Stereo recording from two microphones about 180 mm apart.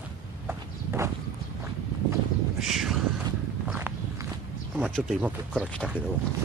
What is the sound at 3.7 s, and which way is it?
Walk, 10° right (ahead or behind).